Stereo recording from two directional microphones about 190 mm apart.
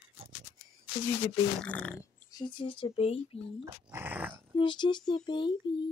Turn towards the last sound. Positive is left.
turn(degrees=25)  # may be behind; listen again after turning